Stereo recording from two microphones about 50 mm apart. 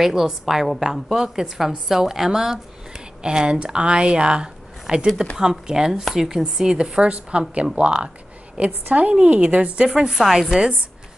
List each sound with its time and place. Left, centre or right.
0.0 s a woman's voice: centre
5.0 s a woman's voice: centre; by 9.8 s right
9.8 s a woman's voice: centre